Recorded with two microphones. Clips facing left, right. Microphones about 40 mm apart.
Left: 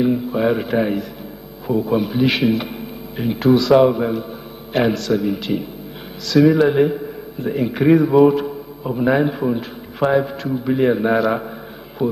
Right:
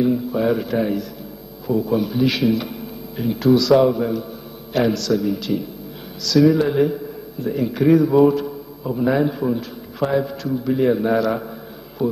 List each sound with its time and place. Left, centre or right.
0.0 s a man's voice: left